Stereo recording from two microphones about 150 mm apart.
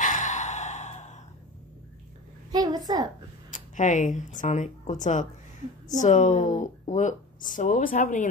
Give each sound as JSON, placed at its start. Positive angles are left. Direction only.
{"t": 0.0, "sound": "sigh", "side_deg": 55}
{"t": 2.5, "sound": "a woman's voice", "side_deg": -25}
{"t": 3.5, "sound": "speech", "side_deg": 55}